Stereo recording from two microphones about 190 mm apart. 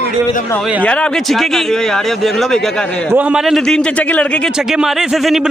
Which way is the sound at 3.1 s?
5° right (ahead or behind).